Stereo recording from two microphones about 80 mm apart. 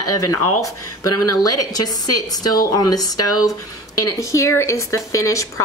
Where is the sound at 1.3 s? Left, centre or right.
Left.